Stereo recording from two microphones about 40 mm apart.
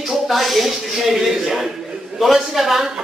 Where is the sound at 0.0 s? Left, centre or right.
Centre.